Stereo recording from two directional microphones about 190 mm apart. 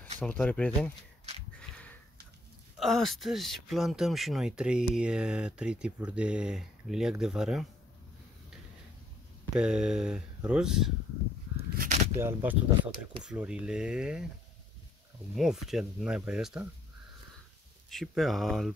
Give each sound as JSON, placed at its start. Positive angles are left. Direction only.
{"t": 0.2, "sound": "speech", "side_deg": 5}
{"t": 2.8, "sound": "speech", "side_deg": 0}
{"t": 9.6, "sound": "speech", "side_deg": -5}
{"t": 11.7, "sound": "a sound", "side_deg": -45}
{"t": 12.2, "sound": "speech", "side_deg": -10}
{"t": 15.3, "sound": "speech", "side_deg": 0}
{"t": 17.8, "sound": "speech", "side_deg": 0}